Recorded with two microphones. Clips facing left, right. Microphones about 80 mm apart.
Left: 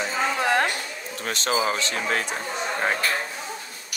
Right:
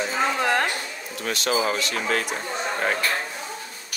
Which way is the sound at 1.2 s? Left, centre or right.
Left.